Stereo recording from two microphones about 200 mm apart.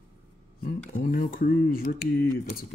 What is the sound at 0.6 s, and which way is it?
Speech, 45° left (ahead or behind).